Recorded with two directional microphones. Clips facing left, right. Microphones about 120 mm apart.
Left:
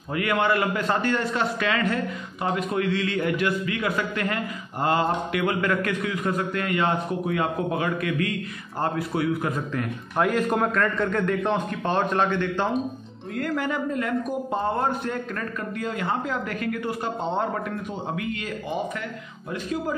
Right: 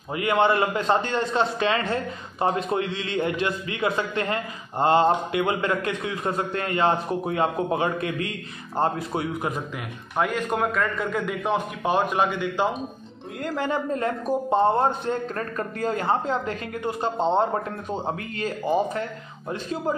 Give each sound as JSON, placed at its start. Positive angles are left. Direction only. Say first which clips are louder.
{"t": 0.1, "sound": "a man's voice", "louder": "right 2 dB", "side_deg": -25}
{"t": 9.8, "sound": "a man's voice", "louder": "left 3 dB", "side_deg": 0}
{"t": 13.4, "sound": "a man's voice", "louder": "even", "side_deg": -25}